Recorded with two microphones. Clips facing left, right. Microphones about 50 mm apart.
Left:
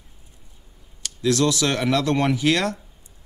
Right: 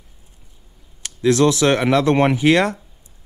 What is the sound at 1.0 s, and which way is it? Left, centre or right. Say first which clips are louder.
Speech: right 5 dB; right.